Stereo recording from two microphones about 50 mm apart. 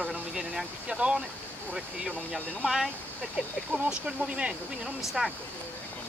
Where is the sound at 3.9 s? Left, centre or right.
Centre.